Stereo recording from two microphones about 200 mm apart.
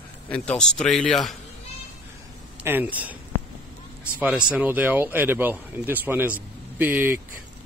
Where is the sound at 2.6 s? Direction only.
10° right (ahead or behind).